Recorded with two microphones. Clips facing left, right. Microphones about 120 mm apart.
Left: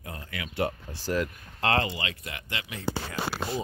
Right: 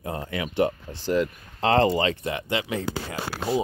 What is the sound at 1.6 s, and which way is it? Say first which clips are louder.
Speech: right 7 dB; 30° right (ahead or behind).